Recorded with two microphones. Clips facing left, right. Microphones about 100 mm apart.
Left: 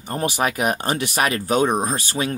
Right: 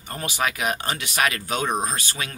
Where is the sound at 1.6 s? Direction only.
10° left (ahead or behind).